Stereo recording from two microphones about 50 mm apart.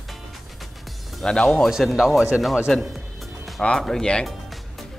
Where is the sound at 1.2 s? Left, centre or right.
Centre.